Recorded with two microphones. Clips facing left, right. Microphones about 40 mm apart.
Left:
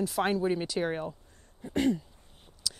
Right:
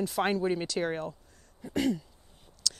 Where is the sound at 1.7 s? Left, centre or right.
Left.